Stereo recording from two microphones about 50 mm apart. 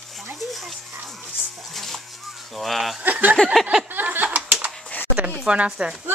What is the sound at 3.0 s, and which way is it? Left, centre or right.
Speech, right.